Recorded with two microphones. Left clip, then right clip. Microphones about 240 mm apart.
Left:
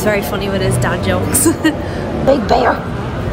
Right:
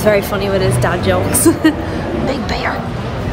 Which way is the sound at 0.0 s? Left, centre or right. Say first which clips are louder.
Right 3 dB; centre.